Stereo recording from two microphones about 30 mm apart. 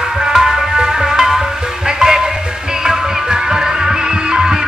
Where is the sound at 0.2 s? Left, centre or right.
Centre.